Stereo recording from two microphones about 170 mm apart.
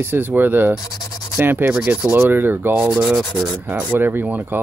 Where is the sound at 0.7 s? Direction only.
20° left (ahead or behind).